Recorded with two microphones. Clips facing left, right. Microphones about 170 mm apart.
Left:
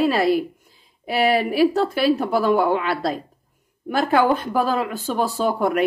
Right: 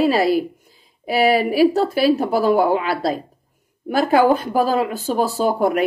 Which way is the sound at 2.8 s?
5° right (ahead or behind).